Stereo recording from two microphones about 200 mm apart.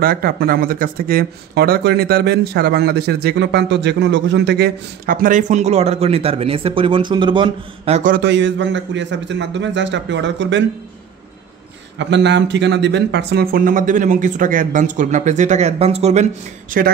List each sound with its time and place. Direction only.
0.0 s speech: 50° right (ahead or behind); by 8.0 s 25° right (ahead or behind)
8.2 s a man's voice: 65° right (ahead or behind)
12.0 s speech: 60° right (ahead or behind); by 16.9 s 45° right (ahead or behind)